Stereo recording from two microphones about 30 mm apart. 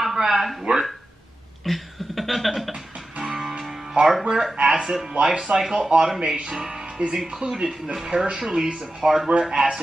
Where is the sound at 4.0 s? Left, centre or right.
Right.